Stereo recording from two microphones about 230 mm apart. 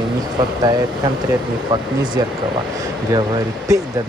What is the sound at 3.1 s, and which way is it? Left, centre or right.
Speech, centre.